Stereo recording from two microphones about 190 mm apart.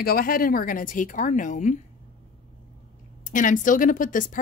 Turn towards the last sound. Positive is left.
turn(degrees=45)  # may be behind; listen again after turning